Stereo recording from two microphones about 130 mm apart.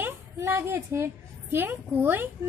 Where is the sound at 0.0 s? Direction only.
20° right (ahead or behind).